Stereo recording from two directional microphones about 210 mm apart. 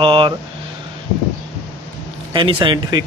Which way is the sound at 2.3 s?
20° right (ahead or behind).